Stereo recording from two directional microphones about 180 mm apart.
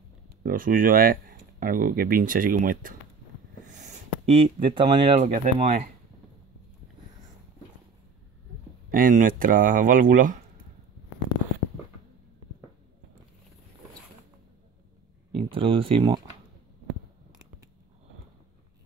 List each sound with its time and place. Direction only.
0.4 s speech: 50° right (ahead or behind)
3.8 s speech: 35° right (ahead or behind)
5.3 s speech: 50° right (ahead or behind)
8.9 s speech: 50° right (ahead or behind)
15.3 s speech: 30° right (ahead or behind)